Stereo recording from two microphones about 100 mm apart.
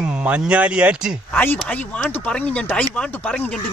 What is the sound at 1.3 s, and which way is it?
Speech, 15° left (ahead or behind).